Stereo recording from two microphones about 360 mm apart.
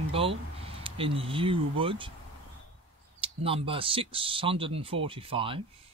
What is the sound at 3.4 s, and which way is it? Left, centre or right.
Speech, centre.